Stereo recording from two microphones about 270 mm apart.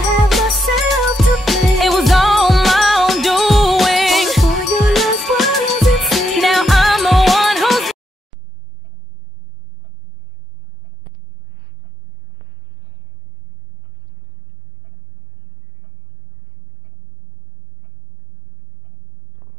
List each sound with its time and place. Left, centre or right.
0.3 s music: centre